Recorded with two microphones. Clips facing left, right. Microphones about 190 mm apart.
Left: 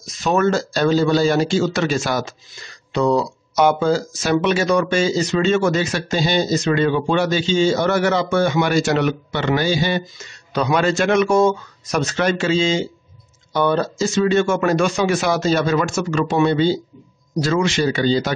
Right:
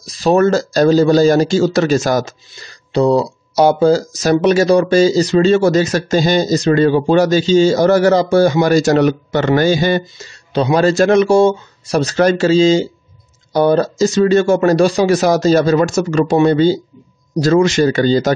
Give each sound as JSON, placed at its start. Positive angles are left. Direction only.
{"t": 0.0, "sound": "a man's voice", "side_deg": -35}
{"t": 10.5, "sound": "a man's voice", "side_deg": -30}